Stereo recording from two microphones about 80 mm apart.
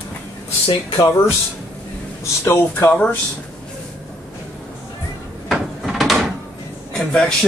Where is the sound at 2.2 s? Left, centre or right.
Left.